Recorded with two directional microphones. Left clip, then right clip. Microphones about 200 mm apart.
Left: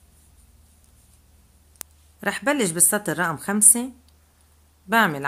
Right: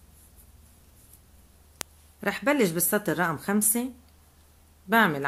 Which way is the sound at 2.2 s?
15° left (ahead or behind).